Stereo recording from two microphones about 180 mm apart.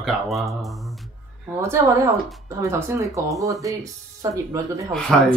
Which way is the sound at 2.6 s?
15° right (ahead or behind).